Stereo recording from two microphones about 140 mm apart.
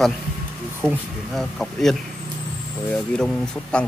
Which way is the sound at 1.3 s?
Centre (ahead or behind).